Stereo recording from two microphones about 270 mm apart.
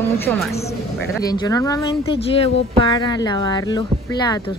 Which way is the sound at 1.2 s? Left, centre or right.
Centre.